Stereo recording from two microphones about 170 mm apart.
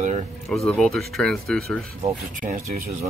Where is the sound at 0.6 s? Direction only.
5° left (ahead or behind).